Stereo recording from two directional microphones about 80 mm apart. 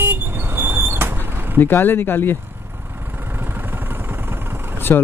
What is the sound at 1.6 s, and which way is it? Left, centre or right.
Speech, left.